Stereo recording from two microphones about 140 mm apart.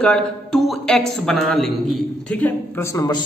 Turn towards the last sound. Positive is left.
turn(degrees=25)  # may be behind; listen again after turning